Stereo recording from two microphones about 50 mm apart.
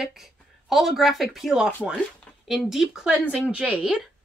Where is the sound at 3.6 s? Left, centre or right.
Right.